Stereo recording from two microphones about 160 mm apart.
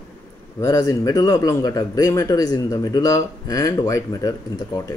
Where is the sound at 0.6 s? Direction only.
20° left (ahead or behind).